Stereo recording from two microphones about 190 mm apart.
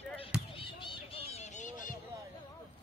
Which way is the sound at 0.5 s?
30° left (ahead or behind).